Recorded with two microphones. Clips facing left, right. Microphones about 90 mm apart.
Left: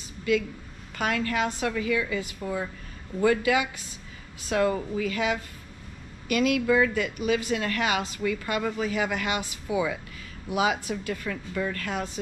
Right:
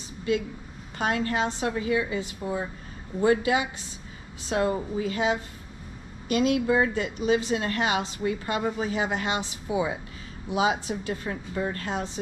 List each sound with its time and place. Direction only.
0.2 s a woman's voice: 30° right (ahead or behind)